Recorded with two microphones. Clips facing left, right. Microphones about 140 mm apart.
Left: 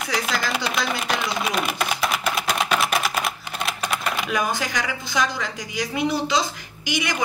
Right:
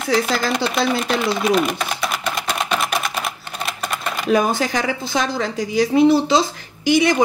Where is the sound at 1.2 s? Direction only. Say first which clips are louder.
Right 7 dB; centre (ahead or behind).